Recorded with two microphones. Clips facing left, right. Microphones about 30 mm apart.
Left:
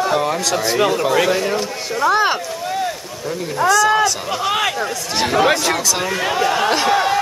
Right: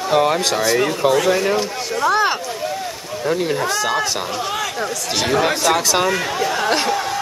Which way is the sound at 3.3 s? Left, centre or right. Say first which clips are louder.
Right 6 dB; right.